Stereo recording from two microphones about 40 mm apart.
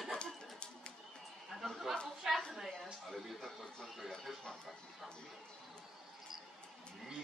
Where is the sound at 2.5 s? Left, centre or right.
Centre.